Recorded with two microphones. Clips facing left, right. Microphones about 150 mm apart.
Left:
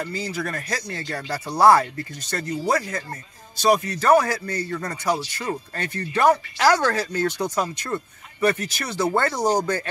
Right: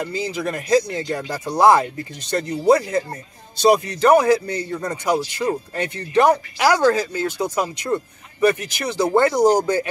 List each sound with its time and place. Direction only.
0.0 s speech: 20° right (ahead or behind)